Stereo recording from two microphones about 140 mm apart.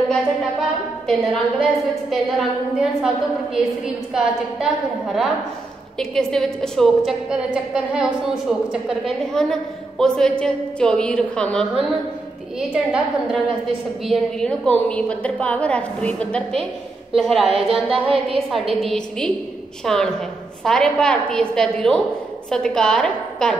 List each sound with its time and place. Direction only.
0.1 s a woman's voice: 5° left (ahead or behind)
12.5 s a woman's voice: 5° right (ahead or behind)